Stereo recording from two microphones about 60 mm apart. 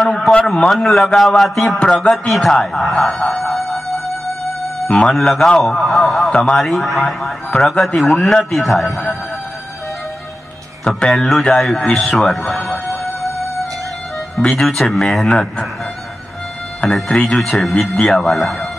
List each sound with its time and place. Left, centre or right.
0.0 s a sound: centre
0.7 s a man's voice: centre
1.8 s a man's voice: centre
2.2 s a man's voice: centre
3.1 s a sound: centre
3.4 s music: centre
4.8 s a man's voice: centre
11.1 s a man's voice: centre
12.2 s a man's voice: centre
14.6 s a man's voice: centre
16.8 s a man's voice: centre
17.3 s a man's voice: centre